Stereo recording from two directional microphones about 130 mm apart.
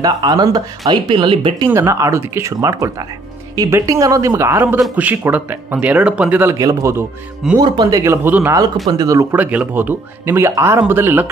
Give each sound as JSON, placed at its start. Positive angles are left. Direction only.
{"t": 0.0, "sound": "speech", "side_deg": -30}
{"t": 1.7, "sound": "speech", "side_deg": -20}
{"t": 6.5, "sound": "speech", "side_deg": -25}
{"t": 7.5, "sound": "speech", "side_deg": -35}
{"t": 8.8, "sound": "speech", "side_deg": -30}
{"t": 9.4, "sound": "speech", "side_deg": -10}